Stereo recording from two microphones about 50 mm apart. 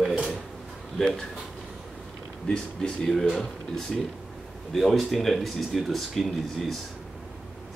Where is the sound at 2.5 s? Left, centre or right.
Centre.